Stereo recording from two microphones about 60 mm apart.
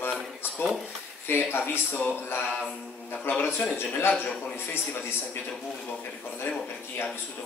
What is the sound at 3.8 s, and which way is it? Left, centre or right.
Speech, left.